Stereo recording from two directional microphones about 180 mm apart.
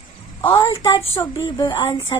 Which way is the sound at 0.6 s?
20° left (ahead or behind).